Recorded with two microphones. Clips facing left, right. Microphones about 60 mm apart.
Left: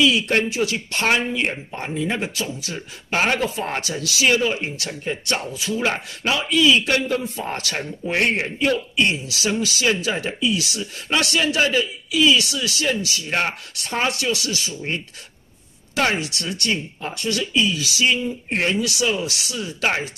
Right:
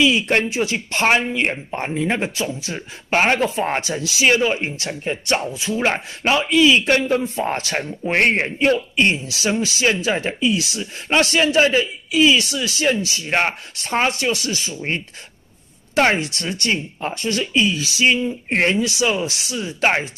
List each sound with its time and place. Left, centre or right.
0.0 s a man's voice: right
18.8 s speech: right